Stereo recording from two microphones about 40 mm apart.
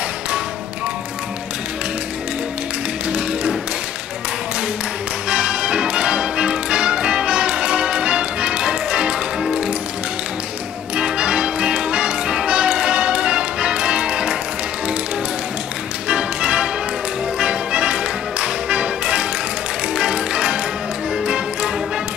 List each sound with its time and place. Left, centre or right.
3.1 s music: centre
5.3 s music: right
11.0 s music: right
16.1 s music: right